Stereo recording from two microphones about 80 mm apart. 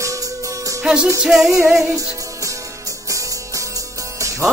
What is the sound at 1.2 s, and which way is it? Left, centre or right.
Music, centre.